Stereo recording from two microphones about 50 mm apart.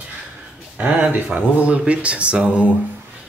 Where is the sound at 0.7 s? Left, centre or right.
Right.